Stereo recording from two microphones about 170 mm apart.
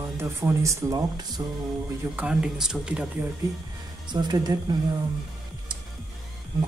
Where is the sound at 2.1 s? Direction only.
5° right (ahead or behind).